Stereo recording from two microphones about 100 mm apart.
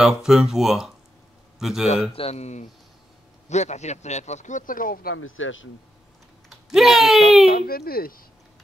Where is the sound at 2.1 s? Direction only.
85° left.